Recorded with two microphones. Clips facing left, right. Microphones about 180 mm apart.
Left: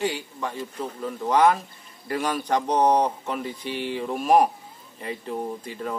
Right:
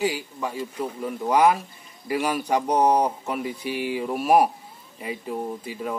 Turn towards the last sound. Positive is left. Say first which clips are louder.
# right 1 dB
turn(degrees=-5)  # may be behind; listen again after turning